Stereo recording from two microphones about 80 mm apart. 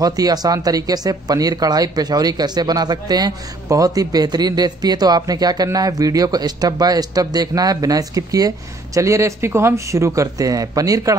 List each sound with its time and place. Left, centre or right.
0.0 s speech: right